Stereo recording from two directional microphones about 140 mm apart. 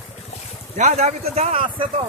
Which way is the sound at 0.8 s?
55° right (ahead or behind).